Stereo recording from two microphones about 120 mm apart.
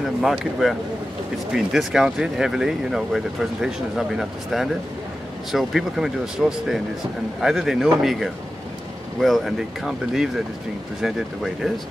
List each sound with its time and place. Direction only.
0.2 s speech: centre (ahead or behind)